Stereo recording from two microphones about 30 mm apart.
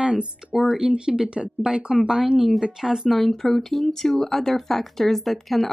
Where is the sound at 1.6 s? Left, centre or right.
Centre.